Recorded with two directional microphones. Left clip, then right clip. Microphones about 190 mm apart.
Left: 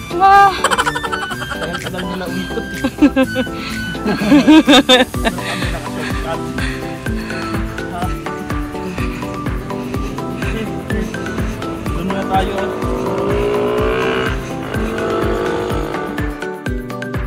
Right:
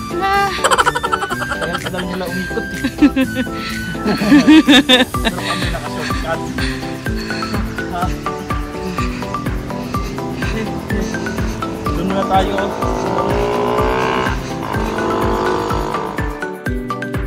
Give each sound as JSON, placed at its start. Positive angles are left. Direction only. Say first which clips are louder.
{"t": 0.2, "sound": "a sound", "louder": "left 7 dB", "side_deg": -5}
{"t": 2.8, "sound": "music", "louder": "left 2 dB", "side_deg": -5}
{"t": 13.7, "sound": "music", "louder": "even", "side_deg": -55}